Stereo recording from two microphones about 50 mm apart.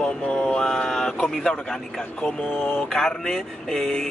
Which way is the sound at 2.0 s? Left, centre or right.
Left.